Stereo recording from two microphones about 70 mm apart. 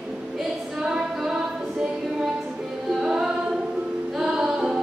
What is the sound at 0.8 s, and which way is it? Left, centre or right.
Female singing, centre.